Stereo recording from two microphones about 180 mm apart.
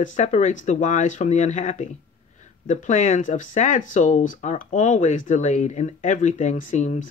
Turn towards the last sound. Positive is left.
turn(degrees=40)  # may be behind; listen again after turning